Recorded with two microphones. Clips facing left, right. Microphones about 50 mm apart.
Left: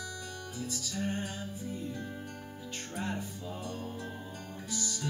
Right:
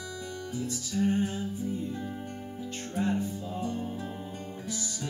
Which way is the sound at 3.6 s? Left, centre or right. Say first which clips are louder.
Right 8 dB; right.